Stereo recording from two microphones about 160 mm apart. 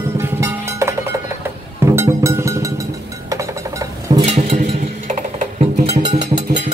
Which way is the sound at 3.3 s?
20° right (ahead or behind).